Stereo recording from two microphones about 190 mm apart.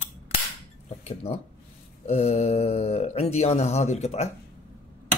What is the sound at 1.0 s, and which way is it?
Speech, 35° left (ahead or behind).